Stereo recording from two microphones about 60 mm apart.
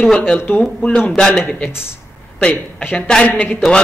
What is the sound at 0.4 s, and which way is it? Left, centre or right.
Speech, left.